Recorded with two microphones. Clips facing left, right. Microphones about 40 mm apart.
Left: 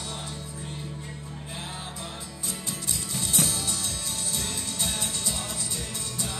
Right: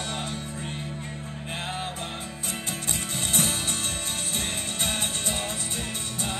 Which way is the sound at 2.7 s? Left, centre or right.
Right.